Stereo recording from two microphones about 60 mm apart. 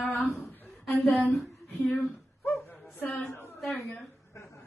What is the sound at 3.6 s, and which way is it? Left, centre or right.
Speech, centre.